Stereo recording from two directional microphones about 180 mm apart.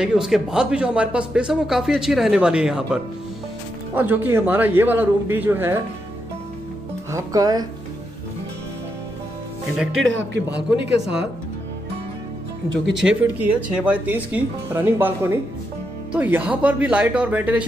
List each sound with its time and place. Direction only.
0.0 s speech: 5° right (ahead or behind)
7.1 s speech: 20° right (ahead or behind)
9.9 s speech: 90° right; by 11.1 s 75° right (ahead or behind)
12.9 s speech: 5° right (ahead or behind)